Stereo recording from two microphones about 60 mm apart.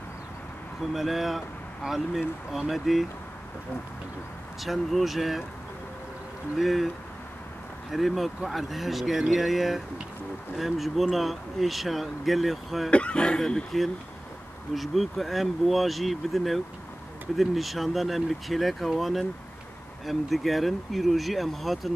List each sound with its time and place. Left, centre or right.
0.7 s speech: centre
4.6 s speech: centre
6.5 s speech: centre
7.9 s speech: centre
12.9 s speech: centre
14.8 s speech: centre